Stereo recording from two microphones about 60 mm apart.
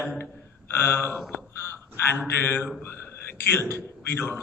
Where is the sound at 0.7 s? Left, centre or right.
Left.